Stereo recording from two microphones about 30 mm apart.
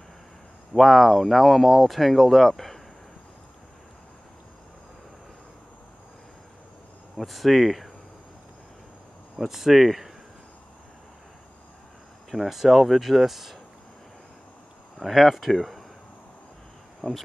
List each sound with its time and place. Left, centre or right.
0.7 s speech: centre
7.2 s speech: centre
9.5 s speech: centre
12.4 s speech: centre
15.0 s speech: centre
17.0 s speech: left